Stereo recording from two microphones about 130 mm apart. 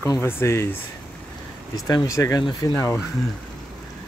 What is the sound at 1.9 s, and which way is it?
Speech, 30° left (ahead or behind).